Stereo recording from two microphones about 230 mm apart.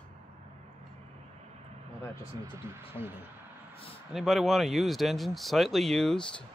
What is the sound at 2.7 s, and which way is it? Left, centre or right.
Speech, centre.